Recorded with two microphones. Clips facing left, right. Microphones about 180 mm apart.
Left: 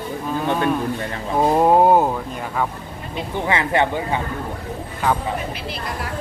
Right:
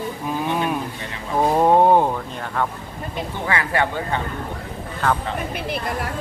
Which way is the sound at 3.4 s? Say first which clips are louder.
Left 3 dB; 20° left (ahead or behind).